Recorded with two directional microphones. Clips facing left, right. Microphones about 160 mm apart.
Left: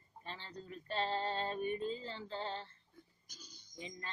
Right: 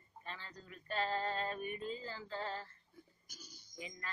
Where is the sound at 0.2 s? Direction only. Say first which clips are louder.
Left 2 dB; 30° left (ahead or behind).